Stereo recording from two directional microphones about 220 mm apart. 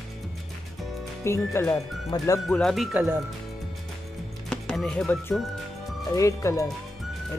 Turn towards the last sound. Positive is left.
turn(degrees=15)  # may be behind; listen again after turning